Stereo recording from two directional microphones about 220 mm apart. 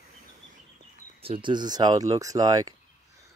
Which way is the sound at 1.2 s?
25° right (ahead or behind).